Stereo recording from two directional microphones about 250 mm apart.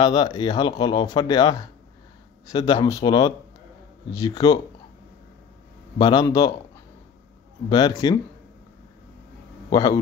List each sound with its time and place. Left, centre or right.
0.0 s speech: centre
5.9 s speech: centre
7.7 s speech: centre
9.7 s a man's voice: centre